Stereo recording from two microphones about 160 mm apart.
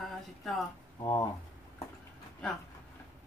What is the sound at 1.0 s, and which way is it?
Speech, 25° left (ahead or behind).